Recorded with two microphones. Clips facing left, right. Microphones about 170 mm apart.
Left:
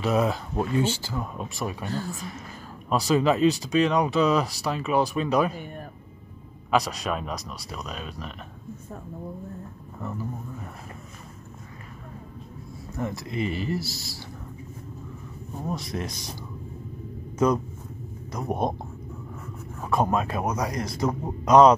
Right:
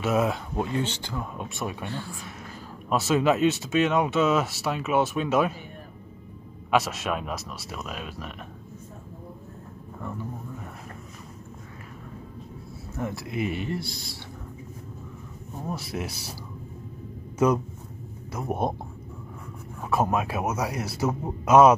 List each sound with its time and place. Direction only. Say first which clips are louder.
0.0 s speech: left 1 dB; centre (ahead or behind)
1.9 s speech: left 4 dB; 40° left (ahead or behind)
2.9 s speech: even; centre (ahead or behind)
6.7 s speech: even; centre (ahead or behind)
9.9 s speech: left 1 dB; 5° left (ahead or behind)
12.9 s speech: left 1 dB; centre (ahead or behind)
15.5 s speech: left 1 dB; 5° right (ahead or behind)
18.3 s speech: left 1 dB; 5° right (ahead or behind)
19.8 s a man's voice: left 1 dB; 5° right (ahead or behind)